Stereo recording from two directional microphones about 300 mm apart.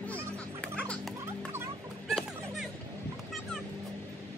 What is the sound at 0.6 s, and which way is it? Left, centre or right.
Music, centre.